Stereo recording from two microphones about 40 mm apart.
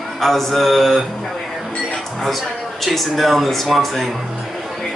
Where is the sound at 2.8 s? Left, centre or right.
Centre.